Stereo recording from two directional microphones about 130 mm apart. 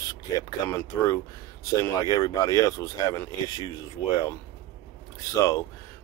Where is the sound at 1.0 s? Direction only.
25° left (ahead or behind).